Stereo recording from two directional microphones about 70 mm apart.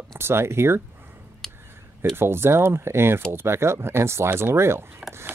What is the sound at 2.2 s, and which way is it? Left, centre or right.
Speech, right.